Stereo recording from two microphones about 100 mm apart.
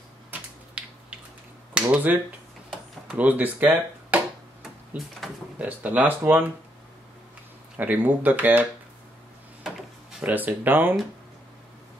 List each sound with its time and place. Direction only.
0.8 s a sound: 15° right (ahead or behind)
1.7 s speech: 10° right (ahead or behind)
5.6 s speech: 15° right (ahead or behind)
7.7 s speech: 15° right (ahead or behind)
9.6 s drawer open or close: 5° right (ahead or behind)
10.2 s speech: 15° right (ahead or behind)